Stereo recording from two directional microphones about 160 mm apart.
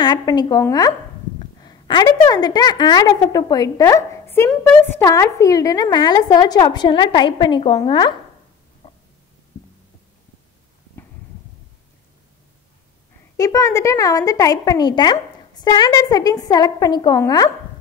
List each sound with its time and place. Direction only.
0.0 s a woman's voice: 25° left (ahead or behind)
8.8 s a sound: 35° left (ahead or behind)
13.4 s a woman's voice: 20° left (ahead or behind)